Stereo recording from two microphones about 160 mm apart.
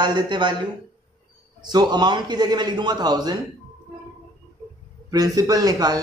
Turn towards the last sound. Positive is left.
turn(degrees=-25)  # may be behind; listen again after turning